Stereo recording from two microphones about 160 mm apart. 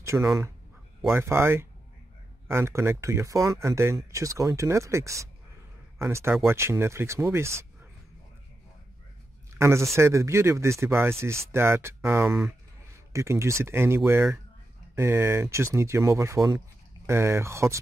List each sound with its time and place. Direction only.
0.0 s speech: 15° right (ahead or behind)
9.6 s speech: 15° right (ahead or behind)